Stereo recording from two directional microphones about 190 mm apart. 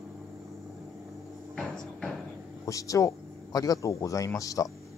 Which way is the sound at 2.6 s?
15° left (ahead or behind).